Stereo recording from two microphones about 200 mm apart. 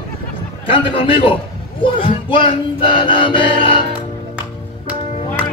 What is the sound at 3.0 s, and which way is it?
Speech, 25° left (ahead or behind).